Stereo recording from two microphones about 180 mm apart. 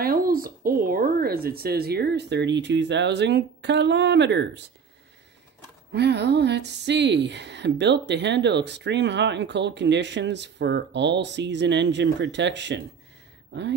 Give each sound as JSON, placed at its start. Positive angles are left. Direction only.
{"t": 0.0, "sound": "speech", "side_deg": -50}
{"t": 5.9, "sound": "speech", "side_deg": -70}